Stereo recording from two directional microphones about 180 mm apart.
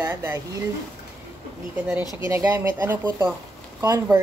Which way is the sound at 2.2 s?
15° right (ahead or behind).